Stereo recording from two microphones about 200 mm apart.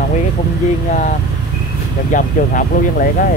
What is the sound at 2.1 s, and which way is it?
Speech, 40° left (ahead or behind).